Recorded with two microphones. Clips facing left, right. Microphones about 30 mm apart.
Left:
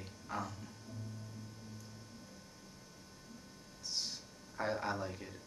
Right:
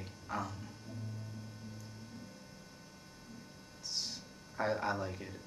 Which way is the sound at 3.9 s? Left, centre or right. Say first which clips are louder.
Even; centre.